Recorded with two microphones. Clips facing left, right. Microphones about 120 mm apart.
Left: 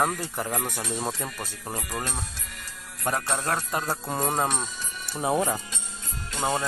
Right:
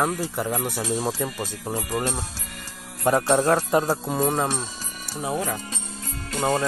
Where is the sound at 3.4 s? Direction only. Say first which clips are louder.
Right 8 dB; 30° right (ahead or behind).